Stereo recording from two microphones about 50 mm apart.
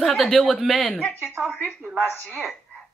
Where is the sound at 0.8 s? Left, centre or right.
Left.